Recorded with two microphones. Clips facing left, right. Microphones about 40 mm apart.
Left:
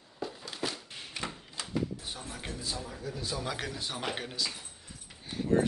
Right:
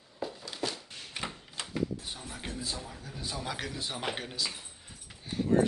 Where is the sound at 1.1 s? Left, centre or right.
Right.